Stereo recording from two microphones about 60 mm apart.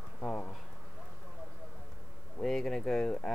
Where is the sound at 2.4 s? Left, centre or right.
Centre.